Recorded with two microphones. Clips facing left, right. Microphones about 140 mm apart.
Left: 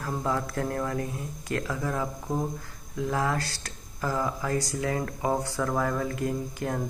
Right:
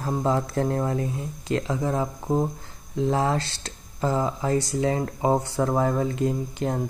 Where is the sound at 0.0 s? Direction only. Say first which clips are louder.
Right 5 dB; 25° right (ahead or behind).